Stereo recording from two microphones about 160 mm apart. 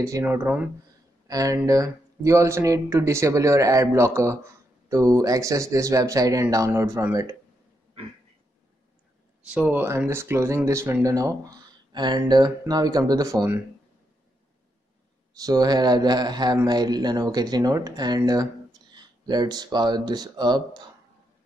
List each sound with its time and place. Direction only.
0.0 s speech: 15° right (ahead or behind)
9.5 s speech: 10° right (ahead or behind)
15.4 s speech: 25° right (ahead or behind)